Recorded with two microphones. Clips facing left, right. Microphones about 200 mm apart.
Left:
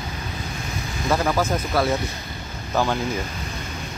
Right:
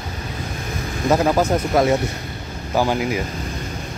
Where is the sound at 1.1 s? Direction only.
20° right (ahead or behind).